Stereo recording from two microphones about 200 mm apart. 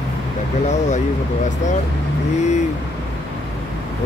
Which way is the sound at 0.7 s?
35° left (ahead or behind).